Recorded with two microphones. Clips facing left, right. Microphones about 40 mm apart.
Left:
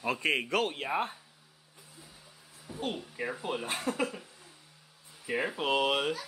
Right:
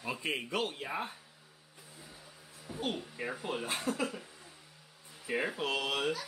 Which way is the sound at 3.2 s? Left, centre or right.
Centre.